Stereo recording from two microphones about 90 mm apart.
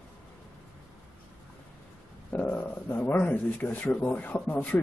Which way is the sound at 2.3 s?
20° left (ahead or behind).